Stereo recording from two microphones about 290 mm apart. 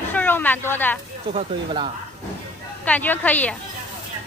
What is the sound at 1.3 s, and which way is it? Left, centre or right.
Speech, centre.